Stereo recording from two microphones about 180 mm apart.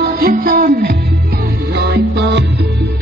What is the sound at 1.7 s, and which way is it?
Music, 70° right (ahead or behind).